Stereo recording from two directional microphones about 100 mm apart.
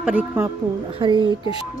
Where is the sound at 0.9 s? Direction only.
55° right (ahead or behind).